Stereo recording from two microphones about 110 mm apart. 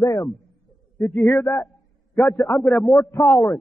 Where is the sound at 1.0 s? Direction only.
15° left (ahead or behind).